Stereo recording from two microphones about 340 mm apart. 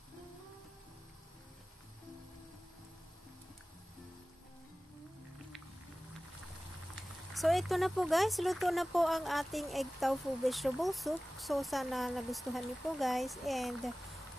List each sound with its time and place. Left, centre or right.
7.3 s speech: centre